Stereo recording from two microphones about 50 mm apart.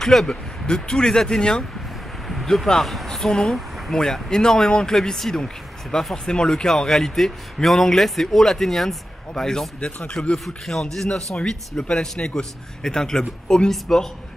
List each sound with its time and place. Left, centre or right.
0.0 s speech: centre
9.8 s speech: left
10.3 s speech: centre